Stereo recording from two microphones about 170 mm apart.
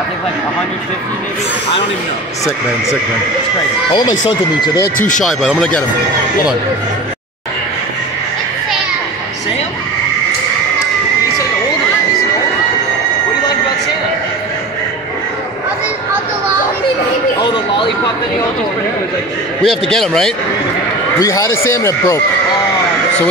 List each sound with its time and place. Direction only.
4.9 s speech: 50° left (ahead or behind)
5.2 s a man's voice: centre (ahead or behind)
17.4 s a sound: 25° left (ahead or behind)
19.6 s a man's voice: centre (ahead or behind)
21.2 s speech: 20° left (ahead or behind)